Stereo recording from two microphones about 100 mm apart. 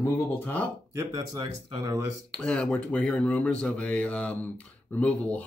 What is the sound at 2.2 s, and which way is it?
Speech, 10° left (ahead or behind).